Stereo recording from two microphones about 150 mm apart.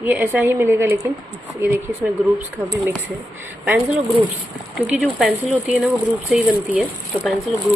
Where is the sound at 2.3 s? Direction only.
15° right (ahead or behind).